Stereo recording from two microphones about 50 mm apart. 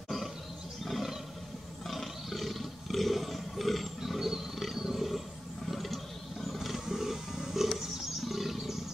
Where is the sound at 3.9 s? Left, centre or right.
Centre.